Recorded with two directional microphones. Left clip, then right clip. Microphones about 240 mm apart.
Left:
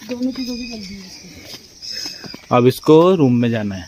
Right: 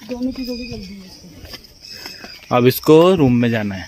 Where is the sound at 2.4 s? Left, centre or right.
Centre.